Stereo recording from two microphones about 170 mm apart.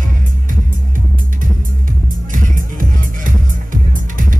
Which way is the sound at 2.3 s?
50° right (ahead or behind).